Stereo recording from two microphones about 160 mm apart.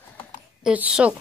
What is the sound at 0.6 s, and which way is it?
Speech, 5° right (ahead or behind).